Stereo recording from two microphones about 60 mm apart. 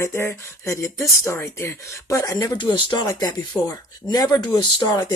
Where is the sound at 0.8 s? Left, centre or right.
Left.